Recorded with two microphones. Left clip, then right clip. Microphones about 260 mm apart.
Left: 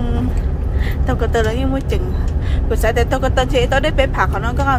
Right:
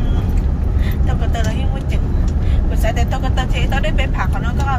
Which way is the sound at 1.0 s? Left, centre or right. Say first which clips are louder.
Left 8 dB; centre.